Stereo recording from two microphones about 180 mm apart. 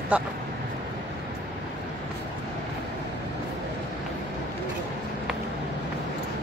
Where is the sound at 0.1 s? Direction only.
5° right (ahead or behind).